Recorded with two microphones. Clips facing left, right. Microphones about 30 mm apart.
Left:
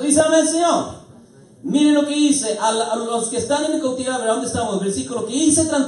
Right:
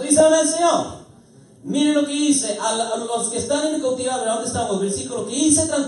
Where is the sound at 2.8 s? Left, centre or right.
Left.